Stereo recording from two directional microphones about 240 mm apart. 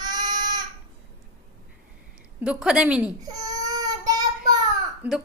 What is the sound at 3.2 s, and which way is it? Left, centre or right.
Baby cry, centre.